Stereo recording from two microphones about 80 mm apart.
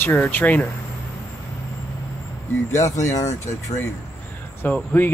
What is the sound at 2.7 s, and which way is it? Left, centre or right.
Speech, left.